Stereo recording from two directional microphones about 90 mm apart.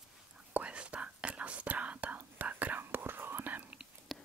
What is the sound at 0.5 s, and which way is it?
Whispering, 15° right (ahead or behind).